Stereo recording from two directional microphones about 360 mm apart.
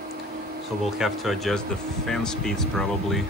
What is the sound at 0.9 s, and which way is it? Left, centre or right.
Speech, centre.